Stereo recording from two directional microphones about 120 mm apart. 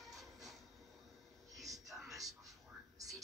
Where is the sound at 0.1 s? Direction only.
Centre (ahead or behind).